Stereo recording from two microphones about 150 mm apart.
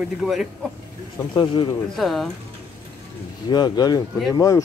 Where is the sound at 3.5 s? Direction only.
25° left (ahead or behind).